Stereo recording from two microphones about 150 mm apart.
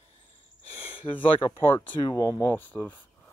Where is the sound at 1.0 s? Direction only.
30° left (ahead or behind).